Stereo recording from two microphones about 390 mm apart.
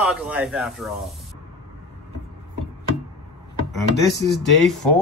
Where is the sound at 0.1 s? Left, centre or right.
Centre.